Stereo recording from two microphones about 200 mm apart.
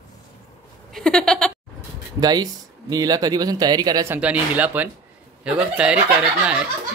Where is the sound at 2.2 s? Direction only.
20° right (ahead or behind).